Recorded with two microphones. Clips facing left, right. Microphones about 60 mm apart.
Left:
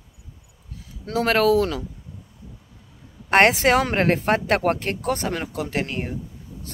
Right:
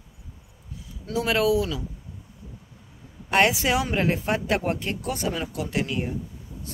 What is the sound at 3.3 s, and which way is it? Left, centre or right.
Speech, left.